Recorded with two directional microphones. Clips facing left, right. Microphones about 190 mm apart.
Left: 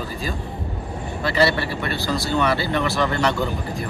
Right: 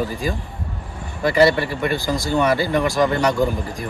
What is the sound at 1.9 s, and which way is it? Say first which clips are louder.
Speech: right 2 dB; 15° right (ahead or behind).